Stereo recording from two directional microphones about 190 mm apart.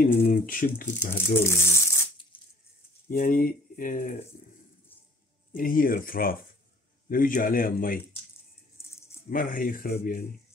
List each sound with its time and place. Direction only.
0.0 s speech: 45° left (ahead or behind)
1.1 s speech: 10° left (ahead or behind)
3.1 s speech: 50° left (ahead or behind)
5.5 s speech: 45° left (ahead or behind)
9.3 s speech: 45° left (ahead or behind)